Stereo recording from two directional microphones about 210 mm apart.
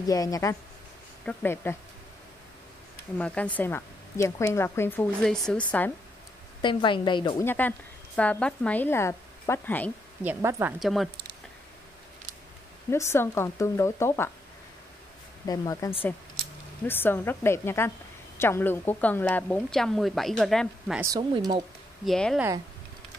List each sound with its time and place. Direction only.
0.1 s a woman's voice: 15° left (ahead or behind)
3.2 s a woman's voice: 5° left (ahead or behind)
6.6 s a woman's voice: 25° left (ahead or behind)
7.4 s a woman's voice: 10° left (ahead or behind)
10.2 s speech: 10° right (ahead or behind)
12.9 s a woman's voice: 10° left (ahead or behind)
15.4 s a woman's voice: 15° left (ahead or behind)
16.8 s a woman's voice: 10° left (ahead or behind)
21.0 s speech: 15° right (ahead or behind)
22.0 s a woman's voice: centre (ahead or behind)